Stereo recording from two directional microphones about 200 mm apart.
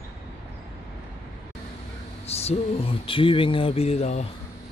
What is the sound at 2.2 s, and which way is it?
Speech, 30° left (ahead or behind).